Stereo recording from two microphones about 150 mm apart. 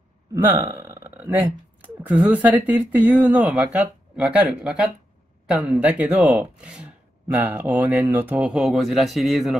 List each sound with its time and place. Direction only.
0.3 s burping: 20° right (ahead or behind)
2.0 s speech: 10° right (ahead or behind)